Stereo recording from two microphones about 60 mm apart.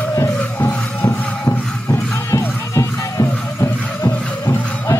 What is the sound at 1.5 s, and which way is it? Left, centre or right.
Music, left.